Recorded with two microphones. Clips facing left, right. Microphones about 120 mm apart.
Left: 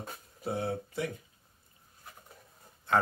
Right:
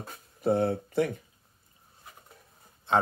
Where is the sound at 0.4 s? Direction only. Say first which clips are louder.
Right 8 dB; 55° right (ahead or behind).